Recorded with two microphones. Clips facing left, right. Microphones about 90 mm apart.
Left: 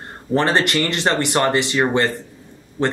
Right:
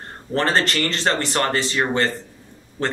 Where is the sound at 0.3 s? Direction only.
15° left (ahead or behind).